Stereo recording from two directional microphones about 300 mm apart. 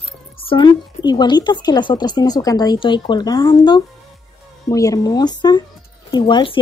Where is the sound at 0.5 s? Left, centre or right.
Centre.